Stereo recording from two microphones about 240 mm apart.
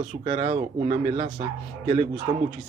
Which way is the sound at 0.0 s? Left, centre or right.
Right.